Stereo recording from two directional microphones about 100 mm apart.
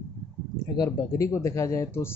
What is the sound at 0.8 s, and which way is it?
Speech, 35° left (ahead or behind).